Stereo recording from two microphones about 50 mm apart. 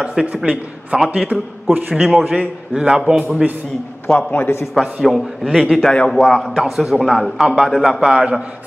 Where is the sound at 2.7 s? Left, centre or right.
Centre.